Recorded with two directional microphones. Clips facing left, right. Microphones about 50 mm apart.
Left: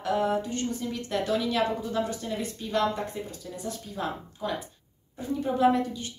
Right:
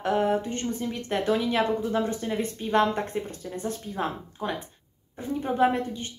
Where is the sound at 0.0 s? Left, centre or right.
Right.